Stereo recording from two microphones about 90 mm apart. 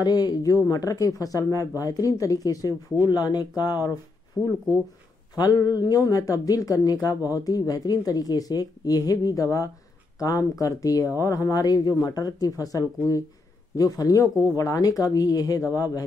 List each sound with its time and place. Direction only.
0.0 s a woman's voice: 50° left (ahead or behind)
5.3 s a woman's voice: 45° left (ahead or behind)